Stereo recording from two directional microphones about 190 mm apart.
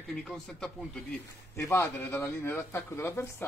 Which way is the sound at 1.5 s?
15° left (ahead or behind).